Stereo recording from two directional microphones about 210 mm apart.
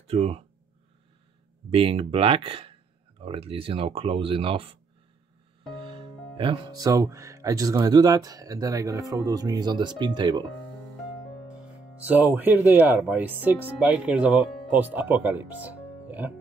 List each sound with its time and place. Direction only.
0.0 s speech: 30° right (ahead or behind)
1.7 s speech: 25° right (ahead or behind)
12.0 s speech: 10° right (ahead or behind)